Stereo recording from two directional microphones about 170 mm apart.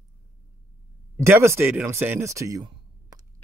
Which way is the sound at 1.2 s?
15° right (ahead or behind).